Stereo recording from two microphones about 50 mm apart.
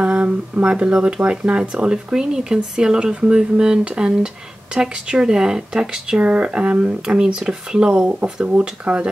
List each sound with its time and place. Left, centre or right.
0.0 s speech: right